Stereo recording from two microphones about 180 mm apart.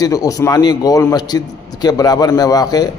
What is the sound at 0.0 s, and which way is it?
A man's voice, 20° left (ahead or behind).